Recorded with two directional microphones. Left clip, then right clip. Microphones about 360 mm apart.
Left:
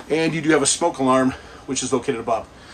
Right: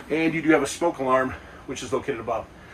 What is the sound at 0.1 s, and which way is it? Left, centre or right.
Speech, centre.